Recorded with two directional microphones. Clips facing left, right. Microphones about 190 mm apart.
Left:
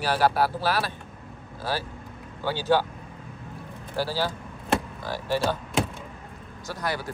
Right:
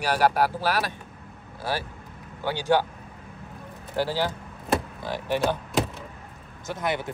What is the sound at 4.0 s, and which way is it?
Speech, 20° right (ahead or behind).